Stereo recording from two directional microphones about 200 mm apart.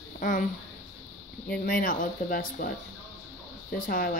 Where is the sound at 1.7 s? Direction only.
45° left (ahead or behind).